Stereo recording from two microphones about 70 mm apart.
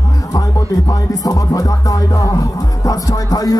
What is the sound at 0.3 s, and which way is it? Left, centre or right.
Music, left.